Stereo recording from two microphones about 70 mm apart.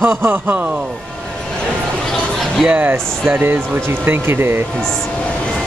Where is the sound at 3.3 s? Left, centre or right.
Right.